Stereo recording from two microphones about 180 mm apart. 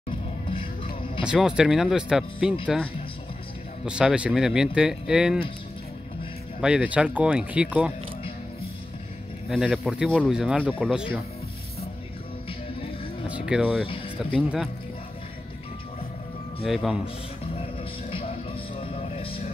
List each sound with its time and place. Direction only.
0.1 s music: 30° left (ahead or behind)
1.2 s speech: 5° right (ahead or behind)
6.6 s speech: 5° right (ahead or behind)
9.5 s speech: centre (ahead or behind)
13.5 s speech: 5° right (ahead or behind)
13.8 s speech: 30° left (ahead or behind)
14.3 s speech: centre (ahead or behind)
16.6 s speech: centre (ahead or behind)
18.1 s music: 30° left (ahead or behind)